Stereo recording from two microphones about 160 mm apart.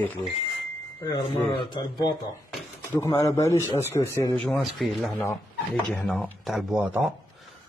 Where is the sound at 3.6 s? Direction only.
15° right (ahead or behind).